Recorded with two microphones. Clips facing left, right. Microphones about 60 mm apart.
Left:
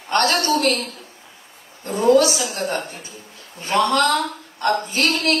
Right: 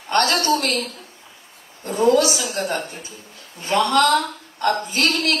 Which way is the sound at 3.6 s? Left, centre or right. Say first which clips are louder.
Right 1 dB; left.